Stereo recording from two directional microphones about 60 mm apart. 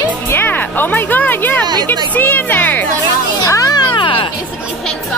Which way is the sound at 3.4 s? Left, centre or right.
Left.